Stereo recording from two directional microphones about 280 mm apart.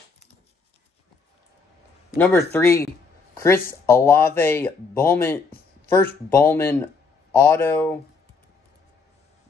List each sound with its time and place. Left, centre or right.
2.1 s speech: centre